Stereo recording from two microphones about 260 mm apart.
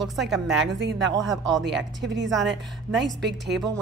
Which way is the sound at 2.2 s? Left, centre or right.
Centre.